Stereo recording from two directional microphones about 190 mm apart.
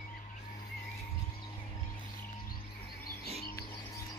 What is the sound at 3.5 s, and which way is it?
Music, 15° left (ahead or behind).